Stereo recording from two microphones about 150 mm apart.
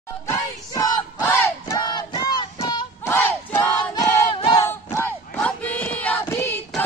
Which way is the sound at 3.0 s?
15° left (ahead or behind).